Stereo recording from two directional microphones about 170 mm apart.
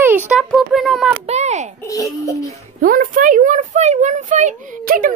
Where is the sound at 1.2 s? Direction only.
40° right (ahead or behind).